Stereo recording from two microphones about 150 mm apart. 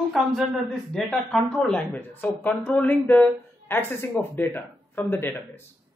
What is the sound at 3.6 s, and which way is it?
A woman's voice, 15° left (ahead or behind).